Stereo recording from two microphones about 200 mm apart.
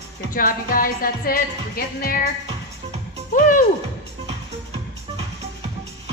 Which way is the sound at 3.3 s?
45° left (ahead or behind).